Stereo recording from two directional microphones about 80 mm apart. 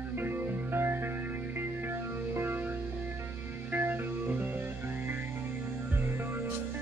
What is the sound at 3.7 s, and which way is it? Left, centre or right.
Music, right.